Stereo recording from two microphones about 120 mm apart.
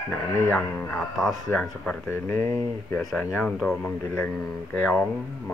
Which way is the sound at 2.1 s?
20° left (ahead or behind).